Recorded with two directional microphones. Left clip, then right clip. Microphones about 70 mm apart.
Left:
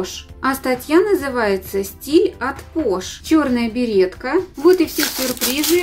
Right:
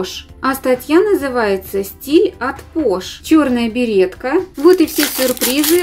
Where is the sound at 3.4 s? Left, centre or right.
Right.